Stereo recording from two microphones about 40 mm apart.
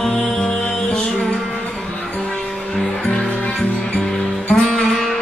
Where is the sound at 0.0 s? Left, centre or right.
Centre.